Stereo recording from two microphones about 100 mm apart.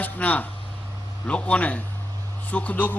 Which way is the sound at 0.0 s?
15° left (ahead or behind).